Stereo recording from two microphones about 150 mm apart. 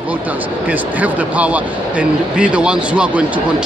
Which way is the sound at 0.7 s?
10° right (ahead or behind).